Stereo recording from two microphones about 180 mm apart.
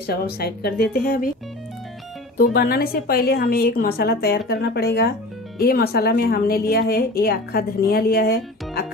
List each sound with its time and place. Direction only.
0.0 s a woman's voice: 60° left (ahead or behind)
2.3 s a woman's voice: 55° left (ahead or behind)